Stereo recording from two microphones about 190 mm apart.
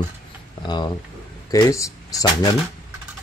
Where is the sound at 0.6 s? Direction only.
25° left (ahead or behind).